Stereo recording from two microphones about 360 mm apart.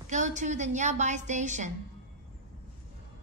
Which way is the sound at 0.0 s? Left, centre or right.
Centre.